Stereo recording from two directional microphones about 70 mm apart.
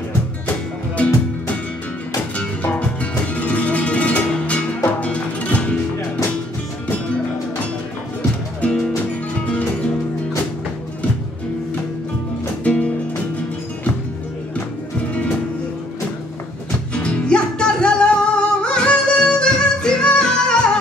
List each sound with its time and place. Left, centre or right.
0.9 s music: centre
12.6 s music: centre
15.0 s music: centre
16.9 s music: centre